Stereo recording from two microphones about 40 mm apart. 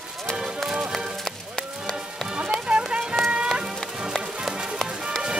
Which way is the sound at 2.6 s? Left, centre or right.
Right.